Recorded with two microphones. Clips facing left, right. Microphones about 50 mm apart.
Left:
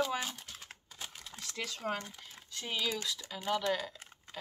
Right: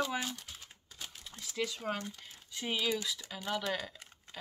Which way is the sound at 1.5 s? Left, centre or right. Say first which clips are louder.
Right 1 dB; centre.